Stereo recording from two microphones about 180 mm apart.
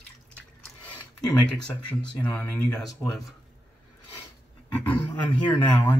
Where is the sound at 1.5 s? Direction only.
5° left (ahead or behind).